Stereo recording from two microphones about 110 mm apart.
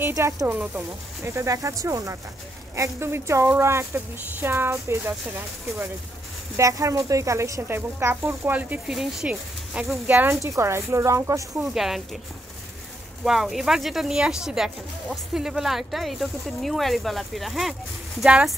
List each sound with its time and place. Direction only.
0.0 s a woman's voice: 25° right (ahead or behind)
0.5 s speech: 15° right (ahead or behind)
1.3 s a woman's voice: 30° right (ahead or behind)
6.5 s a woman's voice: 30° right (ahead or behind); by 8.9 s 15° right (ahead or behind)
8.9 s speech: 5° right (ahead or behind)
10.4 s a woman's voice: 25° right (ahead or behind)
11.5 s speech: 5° right (ahead or behind)
13.2 s speech: 5° right (ahead or behind)